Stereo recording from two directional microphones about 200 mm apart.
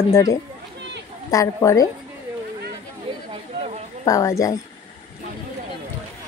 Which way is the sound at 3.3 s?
35° right (ahead or behind).